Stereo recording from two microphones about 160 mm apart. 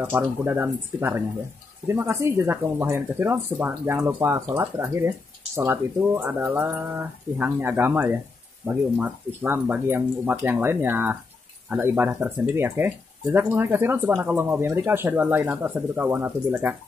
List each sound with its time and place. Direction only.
0.0 s speech: 15° right (ahead or behind)